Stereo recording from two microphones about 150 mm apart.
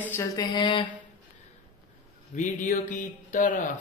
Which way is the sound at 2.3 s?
55° left (ahead or behind).